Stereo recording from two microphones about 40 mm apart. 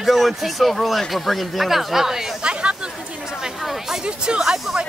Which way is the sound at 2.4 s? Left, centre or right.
Right.